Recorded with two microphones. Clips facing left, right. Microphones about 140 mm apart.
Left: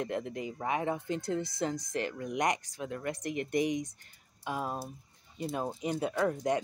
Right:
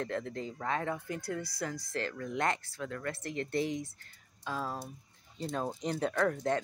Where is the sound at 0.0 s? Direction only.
15° left (ahead or behind).